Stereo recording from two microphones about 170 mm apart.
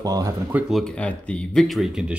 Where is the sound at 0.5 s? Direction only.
Centre (ahead or behind).